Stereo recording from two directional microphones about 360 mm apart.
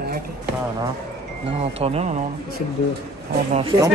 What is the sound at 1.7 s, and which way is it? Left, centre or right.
Speech, centre.